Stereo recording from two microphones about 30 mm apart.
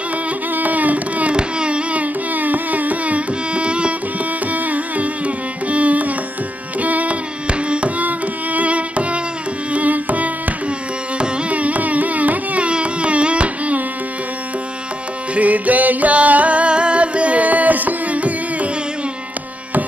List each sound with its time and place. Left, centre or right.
0.6 s a sound: right
1.3 s carnatic music: right
2.3 s music: right
3.5 s music: right
4.5 s carnatic music: right
6.8 s music: right
7.4 s carnatic music: right
8.5 s music: right
9.7 s music: right
11.1 s carnatic music: right
12.6 s a sound: right
15.3 s music: right
16.7 s music: right